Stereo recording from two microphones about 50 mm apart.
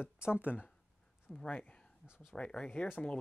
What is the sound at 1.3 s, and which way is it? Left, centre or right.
Speech, centre.